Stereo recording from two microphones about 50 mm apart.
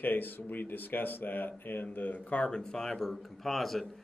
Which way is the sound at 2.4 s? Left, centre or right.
Centre.